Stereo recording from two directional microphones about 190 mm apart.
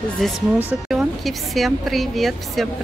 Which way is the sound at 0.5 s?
5° right (ahead or behind).